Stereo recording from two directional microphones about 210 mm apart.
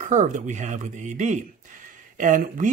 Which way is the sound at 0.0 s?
35° right (ahead or behind).